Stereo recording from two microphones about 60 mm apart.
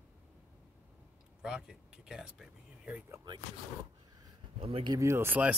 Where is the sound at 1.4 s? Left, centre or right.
Centre.